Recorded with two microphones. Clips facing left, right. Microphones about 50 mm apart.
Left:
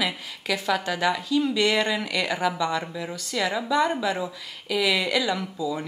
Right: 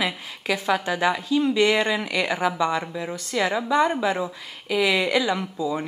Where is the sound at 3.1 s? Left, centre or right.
Right.